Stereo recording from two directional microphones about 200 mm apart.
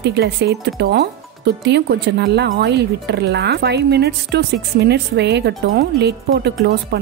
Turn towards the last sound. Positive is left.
turn(degrees=-55)  # may be behind; listen again after turning